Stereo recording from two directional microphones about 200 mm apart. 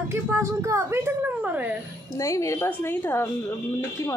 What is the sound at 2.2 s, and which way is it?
Speech, 15° left (ahead or behind).